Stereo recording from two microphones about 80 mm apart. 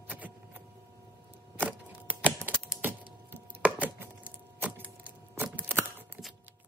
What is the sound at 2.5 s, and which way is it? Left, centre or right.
Typing, right.